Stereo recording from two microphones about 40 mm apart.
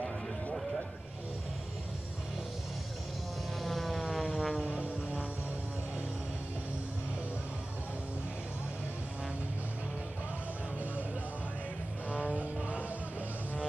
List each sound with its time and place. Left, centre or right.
3.6 s vehicle: centre
4.0 s music: centre
12.1 s vehicle: right